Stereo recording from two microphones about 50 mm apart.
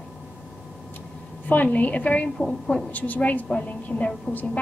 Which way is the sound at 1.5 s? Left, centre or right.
Left.